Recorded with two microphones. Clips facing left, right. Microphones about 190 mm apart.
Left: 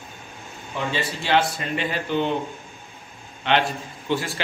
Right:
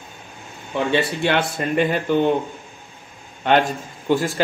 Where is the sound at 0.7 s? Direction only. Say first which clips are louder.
Right 7 dB; 55° right (ahead or behind).